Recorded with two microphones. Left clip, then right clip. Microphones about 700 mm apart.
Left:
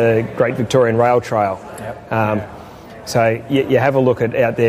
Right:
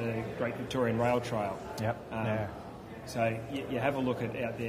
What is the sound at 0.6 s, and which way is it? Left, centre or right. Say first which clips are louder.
Speech: left 16 dB; left.